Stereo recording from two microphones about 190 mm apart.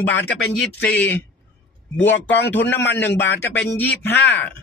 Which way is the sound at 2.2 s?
70° left (ahead or behind).